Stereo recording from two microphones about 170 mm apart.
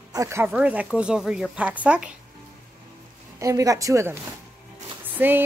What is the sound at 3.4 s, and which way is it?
Speech, 20° right (ahead or behind).